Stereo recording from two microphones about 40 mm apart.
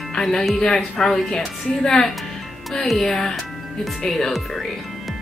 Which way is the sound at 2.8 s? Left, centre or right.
Centre.